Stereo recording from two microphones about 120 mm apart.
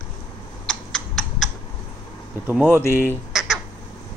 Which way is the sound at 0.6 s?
5° left (ahead or behind).